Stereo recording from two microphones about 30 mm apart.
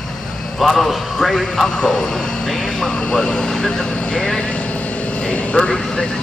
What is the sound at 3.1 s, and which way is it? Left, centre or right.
Speech, left.